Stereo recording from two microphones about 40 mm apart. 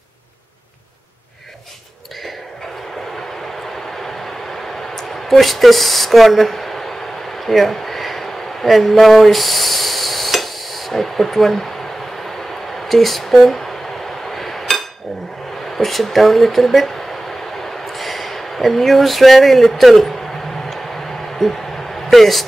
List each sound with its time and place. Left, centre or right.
4.9 s speech: centre
7.3 s a sound: centre
12.8 s speech: centre
14.3 s chink: centre
15.8 s speech: centre
17.9 s speech: centre
21.4 s speech: centre